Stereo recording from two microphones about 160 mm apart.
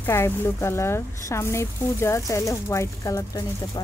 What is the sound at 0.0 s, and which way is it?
Speech, 15° left (ahead or behind).